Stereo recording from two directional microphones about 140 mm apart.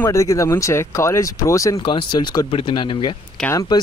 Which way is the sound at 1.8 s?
35° left (ahead or behind).